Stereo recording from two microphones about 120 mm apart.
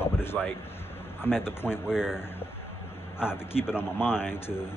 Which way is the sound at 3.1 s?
20° left (ahead or behind).